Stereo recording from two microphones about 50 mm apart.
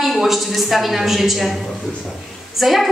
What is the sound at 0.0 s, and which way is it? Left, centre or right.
A woman's voice, centre.